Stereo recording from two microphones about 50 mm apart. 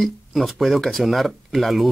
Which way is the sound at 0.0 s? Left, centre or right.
Centre.